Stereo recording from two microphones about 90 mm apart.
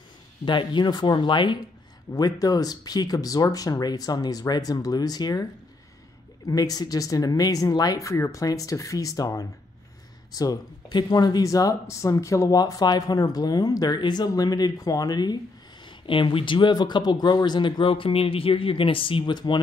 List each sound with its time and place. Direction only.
0.5 s speech: 60° left (ahead or behind)
2.1 s speech: 45° left (ahead or behind)
15.8 s speech: 65° left (ahead or behind)